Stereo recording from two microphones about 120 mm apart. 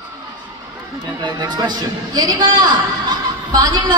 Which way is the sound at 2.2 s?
40° right (ahead or behind).